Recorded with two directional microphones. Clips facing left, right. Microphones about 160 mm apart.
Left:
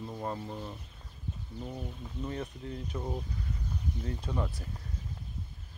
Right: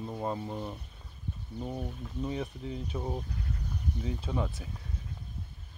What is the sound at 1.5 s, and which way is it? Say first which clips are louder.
Speech: right 4 dB; 10° right (ahead or behind).